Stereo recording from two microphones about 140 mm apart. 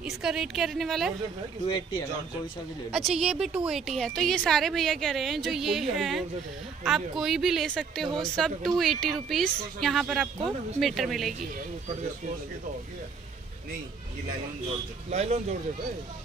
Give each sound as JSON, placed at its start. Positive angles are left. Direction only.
{"t": 0.0, "sound": "a woman's voice", "side_deg": -5}
{"t": 2.9, "sound": "a woman's voice", "side_deg": 0}
{"t": 15.0, "sound": "speech", "side_deg": -50}